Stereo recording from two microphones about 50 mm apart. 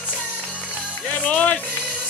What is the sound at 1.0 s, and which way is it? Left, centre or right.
Music, left.